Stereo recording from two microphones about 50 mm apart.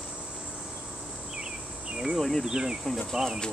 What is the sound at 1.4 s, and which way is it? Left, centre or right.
Insect, centre.